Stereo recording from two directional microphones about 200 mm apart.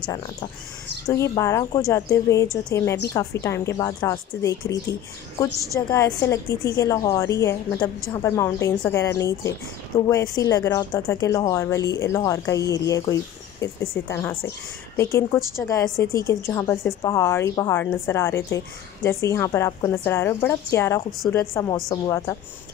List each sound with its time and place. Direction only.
0.0 s a woman's voice: 20° left (ahead or behind)